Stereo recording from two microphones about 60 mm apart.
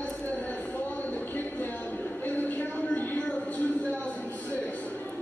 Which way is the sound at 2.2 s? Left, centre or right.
Left.